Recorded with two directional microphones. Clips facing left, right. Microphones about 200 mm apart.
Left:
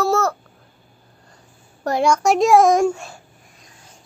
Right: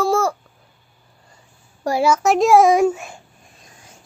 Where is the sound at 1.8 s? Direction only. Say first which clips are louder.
Even; 5° right (ahead or behind).